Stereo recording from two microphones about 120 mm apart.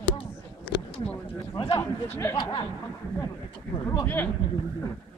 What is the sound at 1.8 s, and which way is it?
Speech, 20° left (ahead or behind).